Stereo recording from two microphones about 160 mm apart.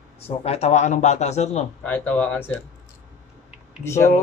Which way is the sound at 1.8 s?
10° left (ahead or behind).